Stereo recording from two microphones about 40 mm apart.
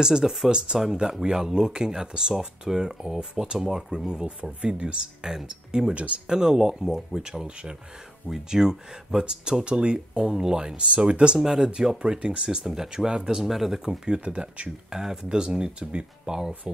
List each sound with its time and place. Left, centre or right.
0.0 s speech: centre
0.5 s speech: right
5.9 s speech: right
6.2 s speech: centre
11.3 s speech: centre
12.4 s speech: centre
13.8 s speech: right